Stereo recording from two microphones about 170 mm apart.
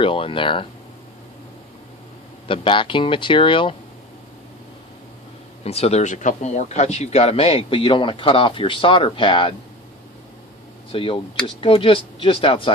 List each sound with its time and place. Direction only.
0.0 s speech: 30° left (ahead or behind)
2.4 s speech: 30° left (ahead or behind)
5.6 s speech: 35° left (ahead or behind)
10.9 s speech: 30° left (ahead or behind)